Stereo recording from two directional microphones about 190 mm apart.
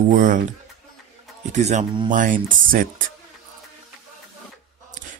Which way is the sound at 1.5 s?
35° right (ahead or behind).